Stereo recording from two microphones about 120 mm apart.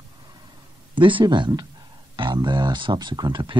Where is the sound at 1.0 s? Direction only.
40° right (ahead or behind).